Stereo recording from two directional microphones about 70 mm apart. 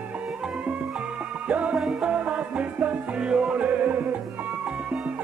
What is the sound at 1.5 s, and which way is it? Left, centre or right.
Music, centre.